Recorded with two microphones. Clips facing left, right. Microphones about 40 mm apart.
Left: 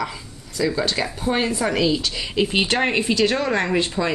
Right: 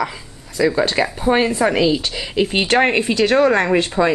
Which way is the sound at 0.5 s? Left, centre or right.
Right.